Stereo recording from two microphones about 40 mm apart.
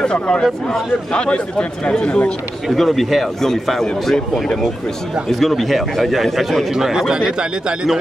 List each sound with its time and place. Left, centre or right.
0.0 s a man's voice: left
2.7 s a man's voice: centre
3.4 s a man's voice: centre
5.4 s a man's voice: centre
6.8 s speech: centre